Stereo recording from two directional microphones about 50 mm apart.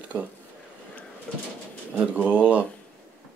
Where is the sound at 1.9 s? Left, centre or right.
Right.